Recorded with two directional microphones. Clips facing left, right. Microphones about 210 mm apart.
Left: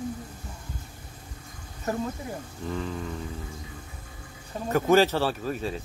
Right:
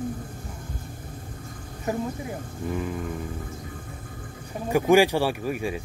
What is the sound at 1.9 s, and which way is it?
Speech, 15° right (ahead or behind).